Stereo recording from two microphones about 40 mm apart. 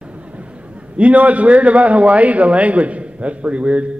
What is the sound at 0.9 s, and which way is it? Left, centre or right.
A man's voice, right.